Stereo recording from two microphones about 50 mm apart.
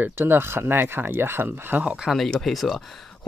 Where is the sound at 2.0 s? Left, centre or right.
Centre.